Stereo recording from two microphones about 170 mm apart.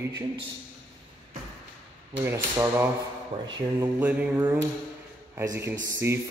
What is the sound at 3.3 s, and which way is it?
Speech, 35° right (ahead or behind).